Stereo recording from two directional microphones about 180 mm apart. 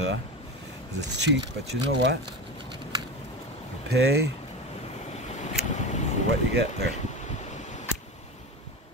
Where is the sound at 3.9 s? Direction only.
65° right (ahead or behind).